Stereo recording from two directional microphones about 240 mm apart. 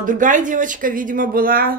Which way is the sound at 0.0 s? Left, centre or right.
Right.